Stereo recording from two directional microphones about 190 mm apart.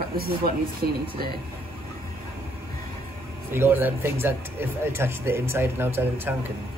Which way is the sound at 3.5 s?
10° right (ahead or behind).